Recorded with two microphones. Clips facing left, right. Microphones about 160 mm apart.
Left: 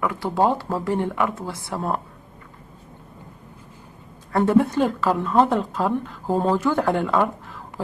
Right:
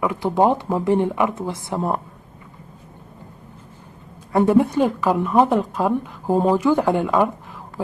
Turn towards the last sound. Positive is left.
turn(degrees=-15)  # may be behind; listen again after turning